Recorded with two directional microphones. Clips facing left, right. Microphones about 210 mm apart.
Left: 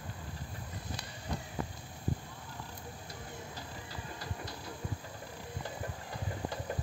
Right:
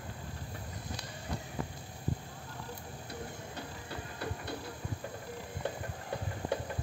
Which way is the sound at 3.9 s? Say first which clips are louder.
Right 6 dB; 60° right (ahead or behind).